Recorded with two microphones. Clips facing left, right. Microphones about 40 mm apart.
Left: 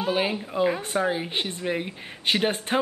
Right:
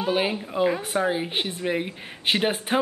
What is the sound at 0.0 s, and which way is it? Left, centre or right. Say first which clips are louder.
Speech: right 1 dB; centre.